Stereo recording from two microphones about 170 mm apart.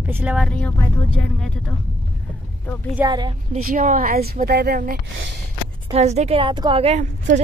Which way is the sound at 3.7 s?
50° right (ahead or behind).